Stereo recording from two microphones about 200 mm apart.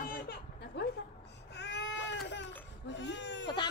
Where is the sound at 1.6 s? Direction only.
60° left (ahead or behind).